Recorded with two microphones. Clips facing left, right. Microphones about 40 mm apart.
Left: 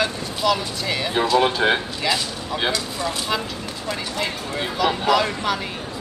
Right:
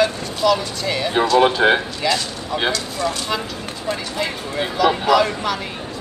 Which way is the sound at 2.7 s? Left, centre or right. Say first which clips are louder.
Right 2 dB; centre.